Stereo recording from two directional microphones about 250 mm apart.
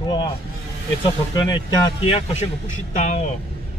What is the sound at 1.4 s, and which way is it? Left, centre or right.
Speech, centre.